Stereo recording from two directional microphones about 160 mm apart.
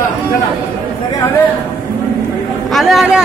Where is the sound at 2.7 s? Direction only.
Centre (ahead or behind).